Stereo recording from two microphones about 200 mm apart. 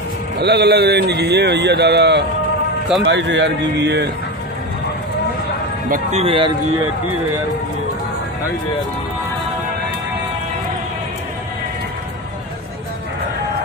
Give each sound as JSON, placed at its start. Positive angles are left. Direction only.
{"t": 0.4, "sound": "a man's voice", "side_deg": -55}
{"t": 5.9, "sound": "speech", "side_deg": -35}